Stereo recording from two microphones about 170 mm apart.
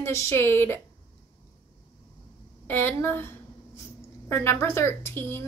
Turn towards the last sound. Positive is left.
turn(degrees=15)  # may be behind; listen again after turning